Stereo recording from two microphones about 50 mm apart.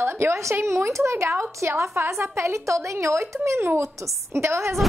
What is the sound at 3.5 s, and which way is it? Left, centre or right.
Speech, right.